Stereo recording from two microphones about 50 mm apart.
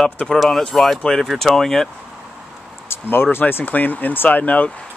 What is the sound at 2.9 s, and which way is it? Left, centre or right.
Speech, left.